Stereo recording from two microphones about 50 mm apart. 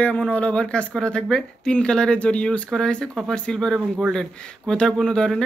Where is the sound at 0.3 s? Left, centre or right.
Left.